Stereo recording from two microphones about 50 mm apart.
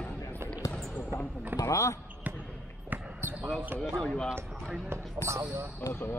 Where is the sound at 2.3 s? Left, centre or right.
Right.